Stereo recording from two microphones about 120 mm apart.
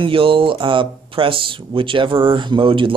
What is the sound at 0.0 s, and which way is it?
Speech, 45° right (ahead or behind).